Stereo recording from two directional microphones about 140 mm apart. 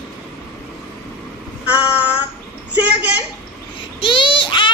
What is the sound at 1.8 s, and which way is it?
Child singing, 10° right (ahead or behind).